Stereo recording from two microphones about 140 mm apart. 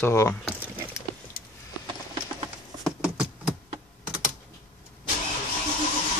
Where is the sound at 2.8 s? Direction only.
5° right (ahead or behind).